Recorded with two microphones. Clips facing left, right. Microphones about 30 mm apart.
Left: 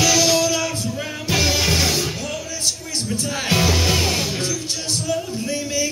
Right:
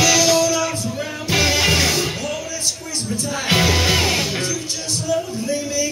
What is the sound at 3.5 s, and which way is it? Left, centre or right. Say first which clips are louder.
Music: right 2 dB; right.